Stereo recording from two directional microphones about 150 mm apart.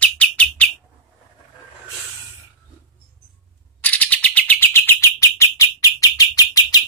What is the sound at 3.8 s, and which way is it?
Bird, 10° left (ahead or behind).